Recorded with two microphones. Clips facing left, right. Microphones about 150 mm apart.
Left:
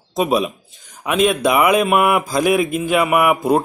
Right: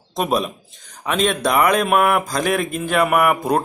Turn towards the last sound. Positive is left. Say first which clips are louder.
# left 2 dB
turn(degrees=5)  # may be behind; listen again after turning